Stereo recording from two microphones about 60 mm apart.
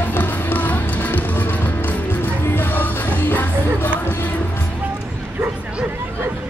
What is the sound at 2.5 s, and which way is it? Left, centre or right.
Music, left.